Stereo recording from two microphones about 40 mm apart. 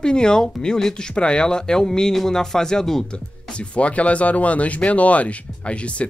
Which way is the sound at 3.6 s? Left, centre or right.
Left.